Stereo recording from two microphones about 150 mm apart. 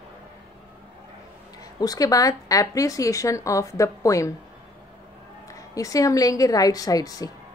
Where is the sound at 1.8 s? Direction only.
25° left (ahead or behind).